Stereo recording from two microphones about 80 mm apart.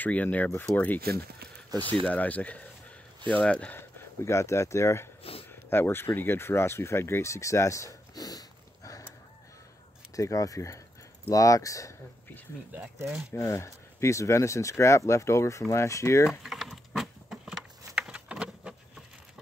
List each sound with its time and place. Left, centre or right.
0.0 s speech: centre
1.7 s speech: right
2.0 s speech: centre
3.7 s speech: left
10.1 s speech: left
12.7 s speech: right
13.3 s speech: left
16.3 s a sound: centre